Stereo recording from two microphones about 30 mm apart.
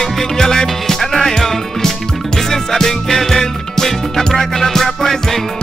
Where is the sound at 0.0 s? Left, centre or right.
Centre.